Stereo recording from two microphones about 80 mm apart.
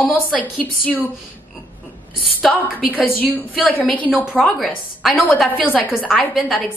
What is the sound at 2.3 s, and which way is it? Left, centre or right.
A woman's voice, left.